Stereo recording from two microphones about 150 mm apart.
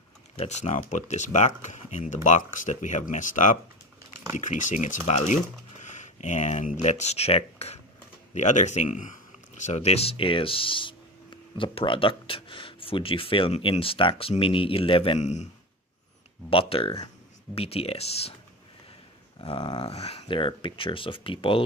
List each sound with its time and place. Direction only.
0.4 s speech: 50° left (ahead or behind)
15.1 s speech: 50° left (ahead or behind)
16.4 s speech: 40° left (ahead or behind)
19.4 s speech: 30° left (ahead or behind)
19.9 s speech: 45° left (ahead or behind)